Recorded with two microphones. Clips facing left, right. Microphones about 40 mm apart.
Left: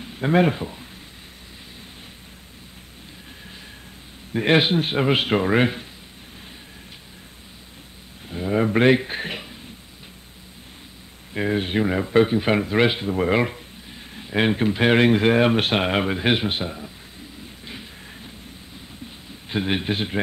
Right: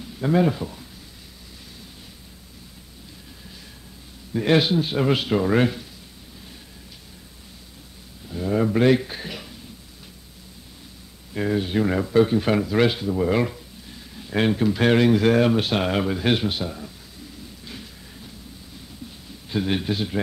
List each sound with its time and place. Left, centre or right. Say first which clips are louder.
0.0 s speech: left 1 dB; left
4.3 s a man's voice: left 1 dB; left
8.3 s a sound: left 1 dB; left
8.6 s a man's voice: left 1 dB; left
11.3 s speech: even; left
13.0 s speech: even; left
13.3 s a sound: left 1 dB; left
14.3 s a man's voice: even; left
15.5 s speech: left 1 dB; left
15.8 s speech: left 1 dB; left
17.6 s train: left 3 dB; left
19.5 s a man's voice: even; left